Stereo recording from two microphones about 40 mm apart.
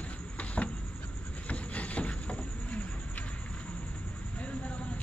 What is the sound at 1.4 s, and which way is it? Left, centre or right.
Insect, left.